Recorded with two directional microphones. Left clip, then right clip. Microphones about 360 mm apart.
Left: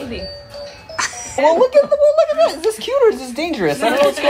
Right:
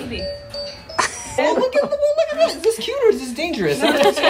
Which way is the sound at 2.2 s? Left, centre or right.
Centre.